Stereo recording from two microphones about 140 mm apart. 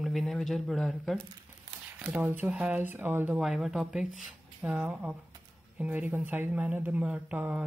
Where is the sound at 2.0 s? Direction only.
15° right (ahead or behind).